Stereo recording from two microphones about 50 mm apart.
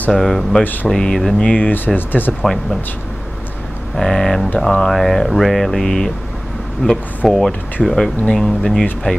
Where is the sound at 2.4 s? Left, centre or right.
Centre.